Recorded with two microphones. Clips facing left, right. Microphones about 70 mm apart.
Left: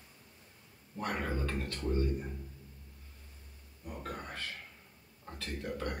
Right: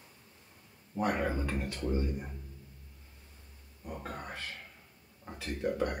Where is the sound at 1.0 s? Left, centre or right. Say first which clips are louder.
Right 4 dB; centre.